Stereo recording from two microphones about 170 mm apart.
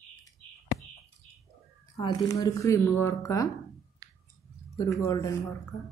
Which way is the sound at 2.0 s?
20° left (ahead or behind).